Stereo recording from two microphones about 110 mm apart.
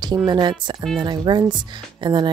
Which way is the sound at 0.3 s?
45° right (ahead or behind).